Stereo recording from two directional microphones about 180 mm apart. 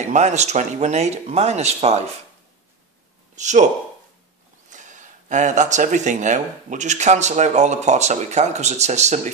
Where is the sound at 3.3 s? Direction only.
40° right (ahead or behind).